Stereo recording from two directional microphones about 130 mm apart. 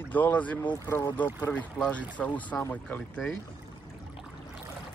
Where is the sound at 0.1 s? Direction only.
15° left (ahead or behind).